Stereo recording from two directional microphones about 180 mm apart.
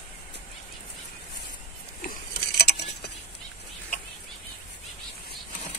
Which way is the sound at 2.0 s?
60° left (ahead or behind).